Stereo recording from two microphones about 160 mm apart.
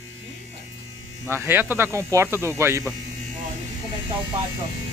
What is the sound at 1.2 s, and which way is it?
Speech, 15° right (ahead or behind).